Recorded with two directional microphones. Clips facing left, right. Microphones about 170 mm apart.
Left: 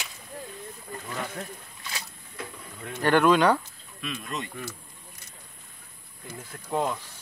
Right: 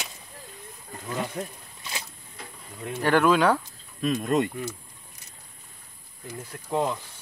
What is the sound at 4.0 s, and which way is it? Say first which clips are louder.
Speech: right 11 dB; 45° right (ahead or behind).